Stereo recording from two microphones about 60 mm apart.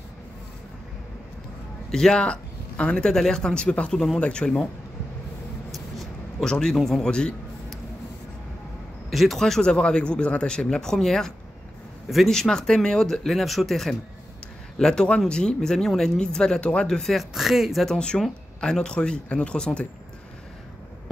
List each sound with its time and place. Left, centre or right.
1.9 s speech: centre
6.4 s speech: centre
9.1 s speech: centre
12.4 s speech: centre
17.8 s speech: centre